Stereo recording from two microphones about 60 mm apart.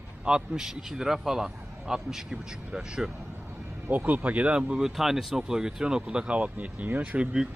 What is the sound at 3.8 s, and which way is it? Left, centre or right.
Speech, right.